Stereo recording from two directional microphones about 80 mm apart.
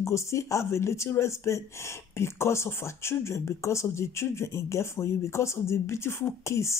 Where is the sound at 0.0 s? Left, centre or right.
Left.